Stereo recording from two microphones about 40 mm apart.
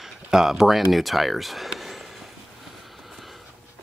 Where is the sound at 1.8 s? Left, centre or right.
Centre.